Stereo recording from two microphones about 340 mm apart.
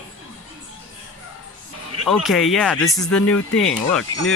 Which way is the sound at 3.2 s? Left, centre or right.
Left.